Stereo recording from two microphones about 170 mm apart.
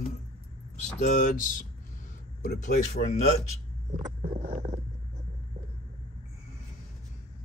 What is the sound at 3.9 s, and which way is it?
Vehicle, 30° right (ahead or behind).